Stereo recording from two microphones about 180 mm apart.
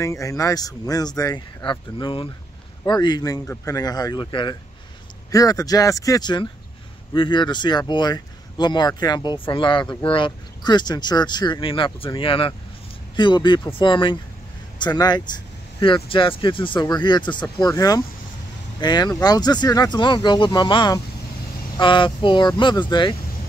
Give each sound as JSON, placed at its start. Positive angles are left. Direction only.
{"t": 0.0, "sound": "speech", "side_deg": 20}